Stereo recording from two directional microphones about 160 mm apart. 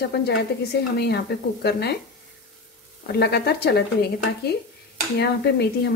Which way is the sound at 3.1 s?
90° left.